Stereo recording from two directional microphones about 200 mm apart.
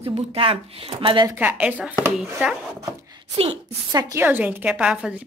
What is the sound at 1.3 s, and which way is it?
Speech, 5° right (ahead or behind).